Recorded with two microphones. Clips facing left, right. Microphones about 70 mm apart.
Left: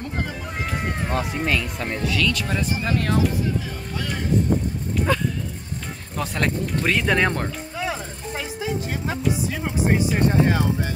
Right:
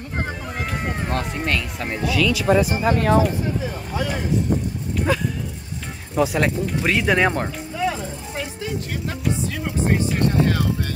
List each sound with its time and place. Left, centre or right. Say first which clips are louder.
0.6 s speech: even; centre
3.9 s music: right 3 dB; centre
5.1 s speech: right 2 dB; centre
8.5 s music: left 1 dB; centre